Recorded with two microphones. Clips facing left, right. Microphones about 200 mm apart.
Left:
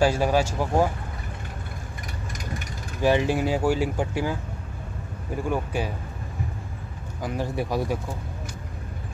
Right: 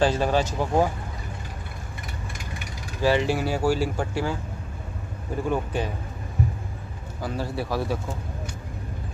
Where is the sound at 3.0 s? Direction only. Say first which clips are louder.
Left 1 dB; 15° left (ahead or behind).